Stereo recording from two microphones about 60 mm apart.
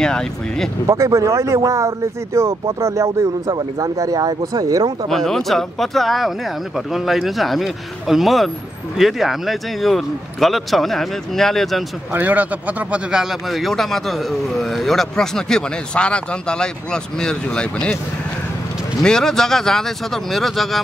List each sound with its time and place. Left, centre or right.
0.0 s a man's voice: centre
0.8 s speech: right
5.1 s speech: centre
12.1 s speech: right
13.1 s a man's voice: centre
19.0 s a man's voice: centre